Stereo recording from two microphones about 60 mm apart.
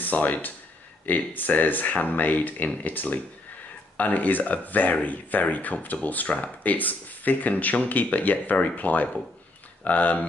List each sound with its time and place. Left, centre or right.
0.0 s speech: left